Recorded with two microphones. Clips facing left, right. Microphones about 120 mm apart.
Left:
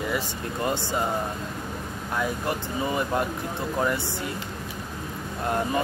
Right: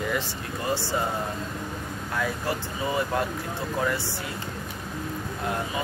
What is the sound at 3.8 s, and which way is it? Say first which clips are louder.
Speech: left 2 dB; 20° left (ahead or behind).